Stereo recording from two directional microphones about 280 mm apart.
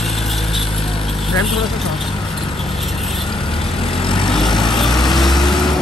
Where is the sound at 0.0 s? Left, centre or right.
Centre.